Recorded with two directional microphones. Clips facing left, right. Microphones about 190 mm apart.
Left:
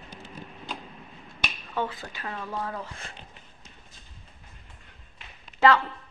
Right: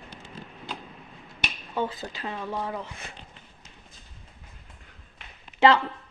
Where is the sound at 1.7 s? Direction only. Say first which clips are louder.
Right 2 dB; 25° right (ahead or behind).